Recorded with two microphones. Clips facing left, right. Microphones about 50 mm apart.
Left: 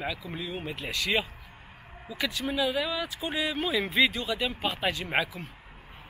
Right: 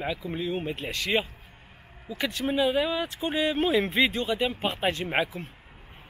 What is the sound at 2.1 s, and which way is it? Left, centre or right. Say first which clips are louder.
Speech: right 3 dB; right.